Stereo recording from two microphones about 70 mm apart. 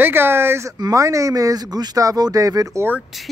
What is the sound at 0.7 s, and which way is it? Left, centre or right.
Speech, right.